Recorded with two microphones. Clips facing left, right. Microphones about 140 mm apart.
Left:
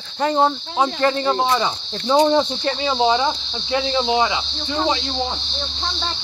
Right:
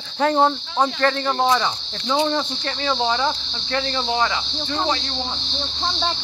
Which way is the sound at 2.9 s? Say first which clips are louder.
Left 3 dB; 15° left (ahead or behind).